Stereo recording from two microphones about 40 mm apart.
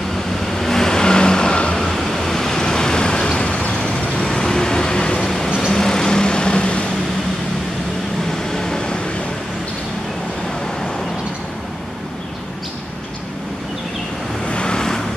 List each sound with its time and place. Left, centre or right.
0.6 s vehicle: centre
1.9 s vehicle: centre
5.2 s vehicle: centre; by 6.9 s left
8.3 s vehicle: centre
14.5 s vehicle: left